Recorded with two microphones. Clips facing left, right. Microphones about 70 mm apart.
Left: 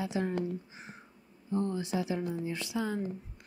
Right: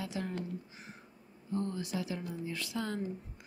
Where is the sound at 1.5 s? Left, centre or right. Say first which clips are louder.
Left 4 dB; left.